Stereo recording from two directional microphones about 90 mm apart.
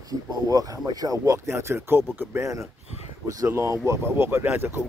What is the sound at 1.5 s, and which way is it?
Speech, 30° right (ahead or behind).